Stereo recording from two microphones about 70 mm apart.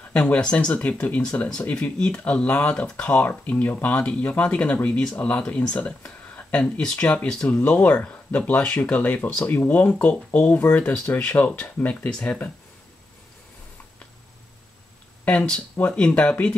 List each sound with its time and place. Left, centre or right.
0.1 s speech: centre
15.2 s speech: centre